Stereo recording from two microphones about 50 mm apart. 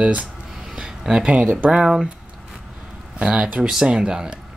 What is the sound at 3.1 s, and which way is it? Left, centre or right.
Speech, right.